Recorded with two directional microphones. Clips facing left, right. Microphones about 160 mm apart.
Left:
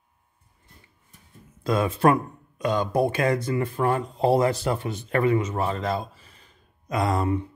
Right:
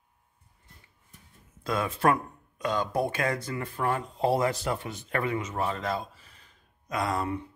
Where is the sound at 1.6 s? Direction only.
25° left (ahead or behind).